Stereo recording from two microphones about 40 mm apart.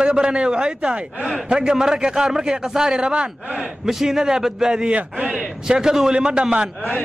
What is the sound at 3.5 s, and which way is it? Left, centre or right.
A man's voice, centre.